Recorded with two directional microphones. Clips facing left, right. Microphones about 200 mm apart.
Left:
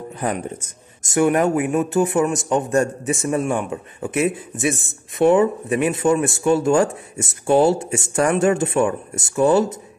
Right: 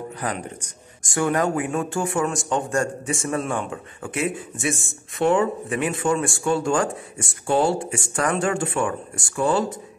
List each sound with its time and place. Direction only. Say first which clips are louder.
1.0 s a man's voice: left 5 dB; 20° left (ahead or behind)